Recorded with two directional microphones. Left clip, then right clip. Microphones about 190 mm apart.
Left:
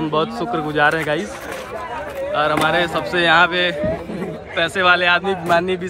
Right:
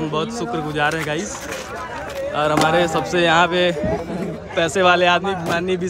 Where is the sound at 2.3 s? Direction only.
10° right (ahead or behind).